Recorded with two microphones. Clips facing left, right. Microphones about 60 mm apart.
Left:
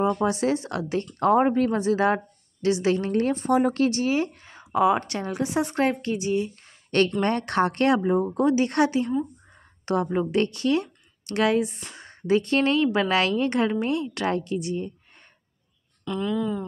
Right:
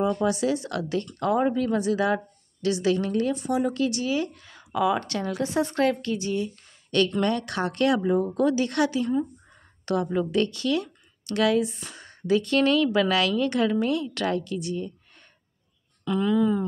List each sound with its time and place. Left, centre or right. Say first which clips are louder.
0.0 s speech: left 1 dB; left
1.2 s a woman's voice: left 4 dB; left
7.2 s a woman's voice: left 3 dB; left
10.1 s speech: left 1 dB; left
11.8 s speech: even; left
16.0 s speech: right 4 dB; centre